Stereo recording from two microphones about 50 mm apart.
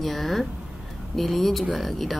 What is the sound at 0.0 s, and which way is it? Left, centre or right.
Speech, centre.